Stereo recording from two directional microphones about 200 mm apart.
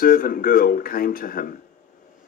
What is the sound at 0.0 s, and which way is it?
Speech, 45° left (ahead or behind).